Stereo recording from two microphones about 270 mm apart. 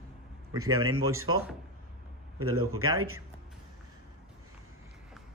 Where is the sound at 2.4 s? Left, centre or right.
Right.